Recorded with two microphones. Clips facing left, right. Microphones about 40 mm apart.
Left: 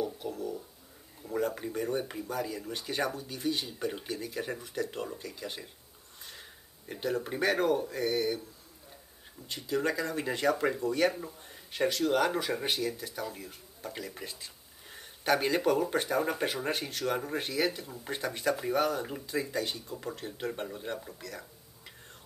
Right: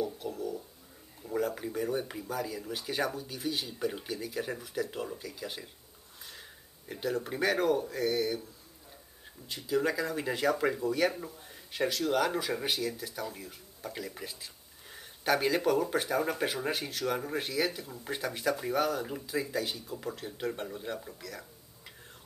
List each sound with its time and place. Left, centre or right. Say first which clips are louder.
0.0 s a sound: even; centre
1.2 s speech: even; centre
6.9 s speech: left 1 dB; centre
9.5 s speech: right 1 dB; centre